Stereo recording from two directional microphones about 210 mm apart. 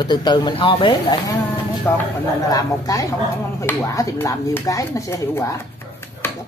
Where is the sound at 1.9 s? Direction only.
10° left (ahead or behind).